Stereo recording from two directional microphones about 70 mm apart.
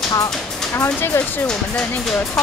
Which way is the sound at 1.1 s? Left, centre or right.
Left.